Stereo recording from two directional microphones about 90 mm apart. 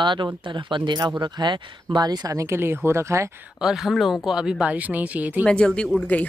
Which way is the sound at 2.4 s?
30° right (ahead or behind).